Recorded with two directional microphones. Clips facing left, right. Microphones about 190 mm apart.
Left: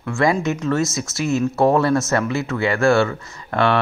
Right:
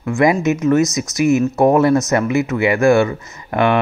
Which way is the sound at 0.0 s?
15° right (ahead or behind).